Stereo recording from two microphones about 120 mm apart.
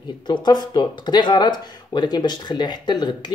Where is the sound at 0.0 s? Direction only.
40° left (ahead or behind).